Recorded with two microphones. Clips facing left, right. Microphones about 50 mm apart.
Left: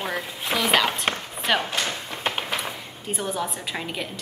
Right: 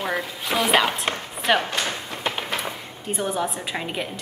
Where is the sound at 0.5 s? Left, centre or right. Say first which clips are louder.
Right 2 dB; centre.